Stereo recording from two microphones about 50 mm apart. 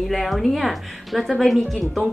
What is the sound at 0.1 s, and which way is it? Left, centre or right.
Speech, centre.